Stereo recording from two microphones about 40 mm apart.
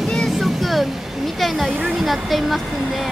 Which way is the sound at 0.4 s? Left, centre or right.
Centre.